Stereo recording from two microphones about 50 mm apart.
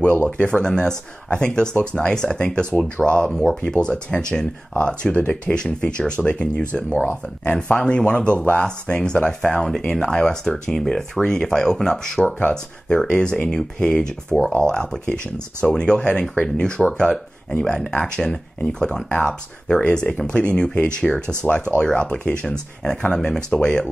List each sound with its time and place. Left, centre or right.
0.2 s speech: left
3.3 s speech: centre
3.6 s speech: centre
12.4 s speech: left
21.1 s speech: centre
21.7 s speech: left